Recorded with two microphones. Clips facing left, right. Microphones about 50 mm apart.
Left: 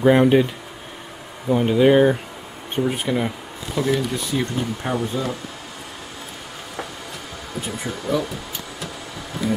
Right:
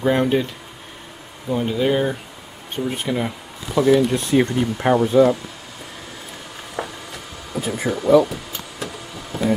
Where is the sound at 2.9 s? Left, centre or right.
Centre.